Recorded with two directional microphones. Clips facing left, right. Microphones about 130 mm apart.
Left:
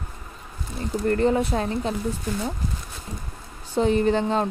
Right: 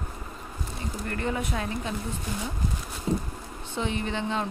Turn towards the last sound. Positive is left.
turn(degrees=40)  # may be behind; listen again after turning